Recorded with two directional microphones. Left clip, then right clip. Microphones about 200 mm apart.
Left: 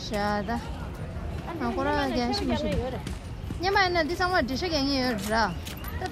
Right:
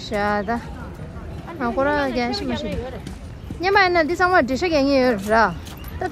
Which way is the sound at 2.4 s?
50° left (ahead or behind).